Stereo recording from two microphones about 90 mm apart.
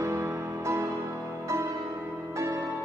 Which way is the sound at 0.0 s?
35° right (ahead or behind).